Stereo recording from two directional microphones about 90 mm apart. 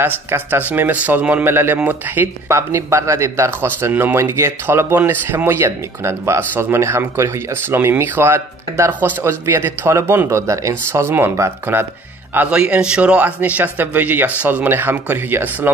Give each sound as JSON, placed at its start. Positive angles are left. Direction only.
{"t": 0.0, "sound": "speech", "side_deg": -25}
{"t": 2.5, "sound": "speech", "side_deg": -30}
{"t": 12.4, "sound": "speech", "side_deg": -15}